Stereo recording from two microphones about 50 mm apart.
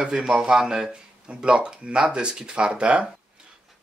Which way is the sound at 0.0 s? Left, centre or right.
Centre.